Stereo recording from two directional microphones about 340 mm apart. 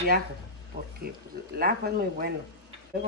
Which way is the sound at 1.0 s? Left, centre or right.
Right.